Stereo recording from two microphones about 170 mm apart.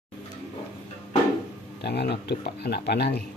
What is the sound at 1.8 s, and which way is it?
Speech, 80° left.